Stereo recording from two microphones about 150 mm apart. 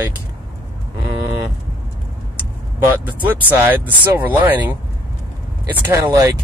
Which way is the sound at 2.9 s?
10° right (ahead or behind).